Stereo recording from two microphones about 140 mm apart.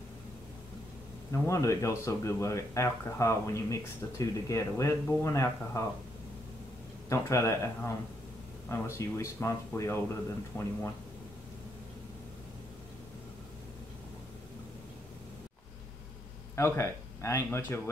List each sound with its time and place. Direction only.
1.3 s speech: 20° left (ahead or behind)
7.1 s speech: 20° left (ahead or behind)
16.5 s speech: 20° left (ahead or behind)